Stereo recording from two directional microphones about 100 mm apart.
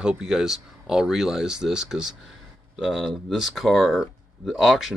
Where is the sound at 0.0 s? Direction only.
5° right (ahead or behind).